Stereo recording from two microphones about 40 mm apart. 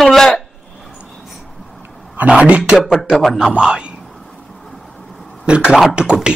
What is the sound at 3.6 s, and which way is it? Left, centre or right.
Speech, right.